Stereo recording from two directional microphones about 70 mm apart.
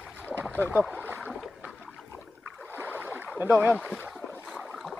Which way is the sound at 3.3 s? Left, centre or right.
Right.